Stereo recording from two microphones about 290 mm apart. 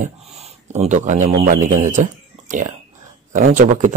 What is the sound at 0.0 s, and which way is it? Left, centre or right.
A man's voice, right.